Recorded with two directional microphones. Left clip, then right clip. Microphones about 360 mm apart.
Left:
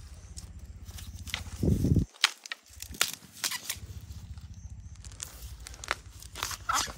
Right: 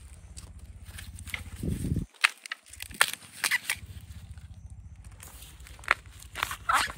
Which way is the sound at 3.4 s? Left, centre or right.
Centre.